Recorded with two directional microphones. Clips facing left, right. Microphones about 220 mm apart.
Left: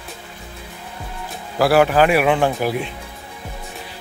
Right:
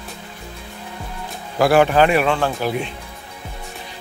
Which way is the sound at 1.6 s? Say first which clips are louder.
Even; 5° left (ahead or behind).